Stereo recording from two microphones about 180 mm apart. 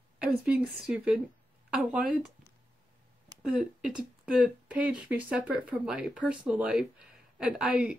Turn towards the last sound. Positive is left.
turn(degrees=-5)  # may be behind; listen again after turning